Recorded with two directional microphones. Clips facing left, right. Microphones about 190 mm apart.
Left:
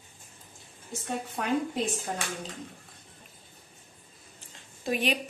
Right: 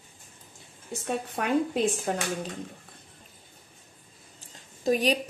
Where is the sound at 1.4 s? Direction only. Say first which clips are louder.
Right 4 dB; 60° right (ahead or behind).